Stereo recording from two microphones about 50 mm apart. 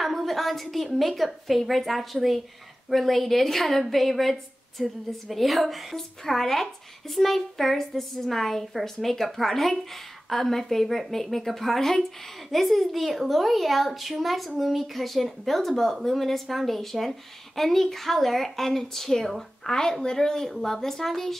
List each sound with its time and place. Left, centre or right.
0.0 s a woman's voice: centre